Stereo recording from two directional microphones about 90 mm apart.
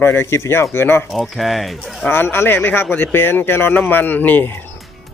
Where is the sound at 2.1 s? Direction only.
25° left (ahead or behind).